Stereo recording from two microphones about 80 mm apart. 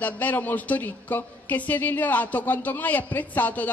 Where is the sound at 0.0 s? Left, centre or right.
Left.